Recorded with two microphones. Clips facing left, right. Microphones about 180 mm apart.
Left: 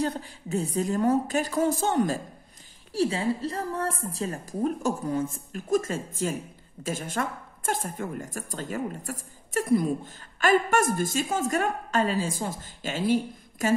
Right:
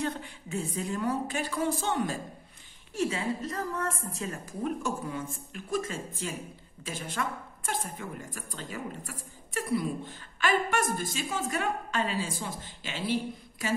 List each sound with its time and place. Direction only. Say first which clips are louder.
0.0 s a woman's voice: left 4 dB; 35° left (ahead or behind)
2.9 s a woman's voice: left 5 dB; 30° left (ahead or behind)